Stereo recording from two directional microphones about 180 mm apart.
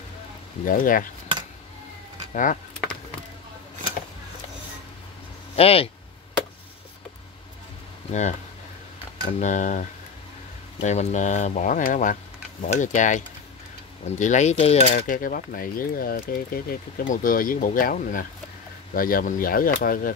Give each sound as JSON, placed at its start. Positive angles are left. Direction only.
{"t": 0.7, "sound": "speech", "side_deg": 50}
{"t": 2.3, "sound": "speech", "side_deg": 45}
{"t": 5.6, "sound": "speech", "side_deg": 35}
{"t": 8.1, "sound": "speech", "side_deg": 40}